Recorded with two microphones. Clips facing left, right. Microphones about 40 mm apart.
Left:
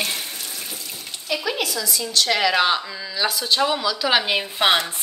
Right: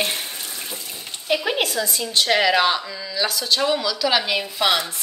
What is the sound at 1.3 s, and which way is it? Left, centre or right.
Speech, right.